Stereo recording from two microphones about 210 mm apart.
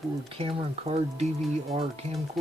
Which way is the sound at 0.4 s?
30° right (ahead or behind).